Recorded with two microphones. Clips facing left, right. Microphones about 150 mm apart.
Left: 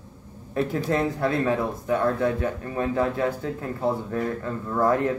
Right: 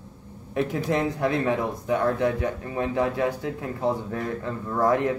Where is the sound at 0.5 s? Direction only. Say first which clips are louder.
Left 1 dB; 15° right (ahead or behind).